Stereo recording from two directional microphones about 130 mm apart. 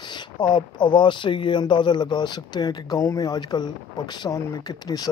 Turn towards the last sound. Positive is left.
turn(degrees=30)  # may be behind; listen again after turning